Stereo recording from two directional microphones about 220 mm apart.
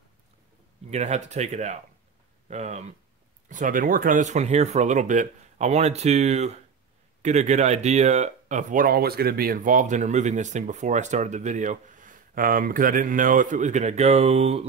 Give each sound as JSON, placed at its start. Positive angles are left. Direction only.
{"t": 0.8, "sound": "speech", "side_deg": -30}